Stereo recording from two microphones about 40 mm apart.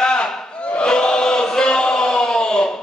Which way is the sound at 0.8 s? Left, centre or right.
Left.